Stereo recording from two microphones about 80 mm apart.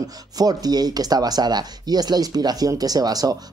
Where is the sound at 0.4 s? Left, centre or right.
Right.